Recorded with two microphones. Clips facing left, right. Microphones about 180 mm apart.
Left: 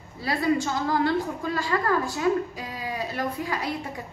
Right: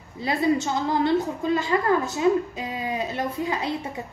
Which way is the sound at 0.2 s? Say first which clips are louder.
Right 2 dB; 20° right (ahead or behind).